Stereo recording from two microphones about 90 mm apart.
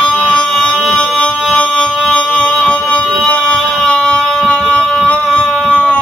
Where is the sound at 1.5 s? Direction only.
10° left (ahead or behind).